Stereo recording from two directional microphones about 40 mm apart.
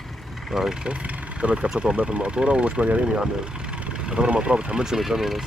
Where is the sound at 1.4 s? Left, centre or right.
Right.